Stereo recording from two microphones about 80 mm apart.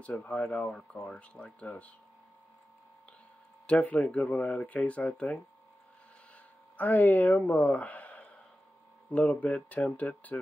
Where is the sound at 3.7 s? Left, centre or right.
Centre.